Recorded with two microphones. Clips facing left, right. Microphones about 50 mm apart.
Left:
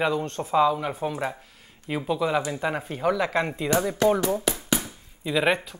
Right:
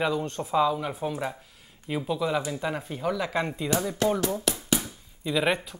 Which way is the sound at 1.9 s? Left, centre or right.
Centre.